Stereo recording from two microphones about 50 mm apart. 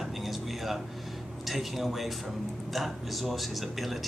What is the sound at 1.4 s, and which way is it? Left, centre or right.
A man's voice, centre.